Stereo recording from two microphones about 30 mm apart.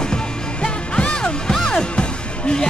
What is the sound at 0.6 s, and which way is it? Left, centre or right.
Music, left.